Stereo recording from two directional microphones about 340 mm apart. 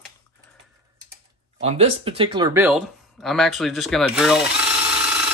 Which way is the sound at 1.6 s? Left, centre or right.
Centre.